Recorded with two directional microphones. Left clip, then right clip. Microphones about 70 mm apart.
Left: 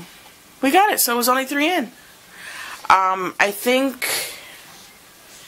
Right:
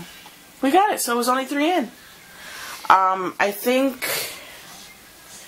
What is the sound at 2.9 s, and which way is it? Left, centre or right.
Speech, left.